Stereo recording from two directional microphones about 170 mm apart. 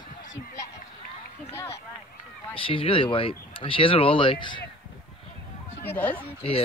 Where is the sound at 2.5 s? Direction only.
30° left (ahead or behind).